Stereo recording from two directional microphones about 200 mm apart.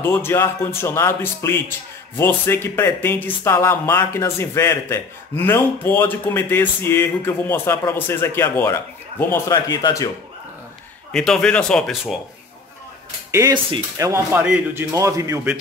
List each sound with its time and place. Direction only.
0.0 s a man's voice: 10° left (ahead or behind)
11.1 s speech: 5° left (ahead or behind)
13.3 s a man's voice: 15° right (ahead or behind)
14.3 s a man's voice: 5° right (ahead or behind)